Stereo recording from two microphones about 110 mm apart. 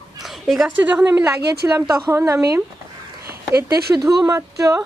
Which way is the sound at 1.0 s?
25° right (ahead or behind).